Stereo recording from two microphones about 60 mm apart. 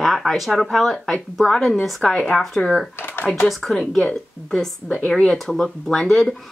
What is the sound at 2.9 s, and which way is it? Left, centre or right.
Speech, left.